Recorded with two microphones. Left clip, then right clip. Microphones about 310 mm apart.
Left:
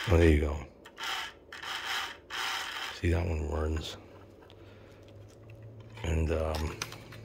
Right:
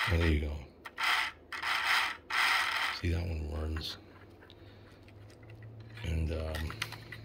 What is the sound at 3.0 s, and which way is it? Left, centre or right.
Speech, centre.